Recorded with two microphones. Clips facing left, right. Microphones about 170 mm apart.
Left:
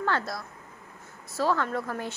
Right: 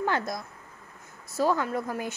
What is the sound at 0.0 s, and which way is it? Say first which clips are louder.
A woman's voice: right 1 dB; 15° right (ahead or behind).